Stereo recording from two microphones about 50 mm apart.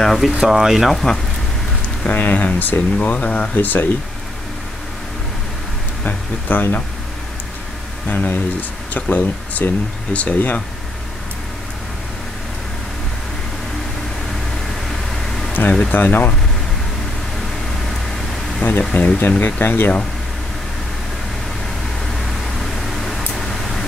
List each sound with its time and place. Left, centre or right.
0.0 s speech: centre
0.4 s speech: centre
2.0 s speech: left
3.5 s speech: left
6.0 s speech: left
8.1 s speech: left
9.6 s speech: left
10.1 s speech: left
15.9 s speech: left
18.6 s a sound: left
18.9 s speech: left
22.6 s a sound: centre